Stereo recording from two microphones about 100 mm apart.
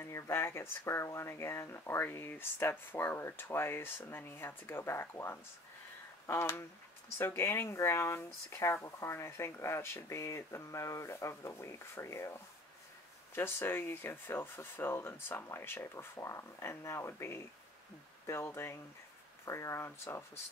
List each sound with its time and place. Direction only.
0.0 s speech: 25° left (ahead or behind)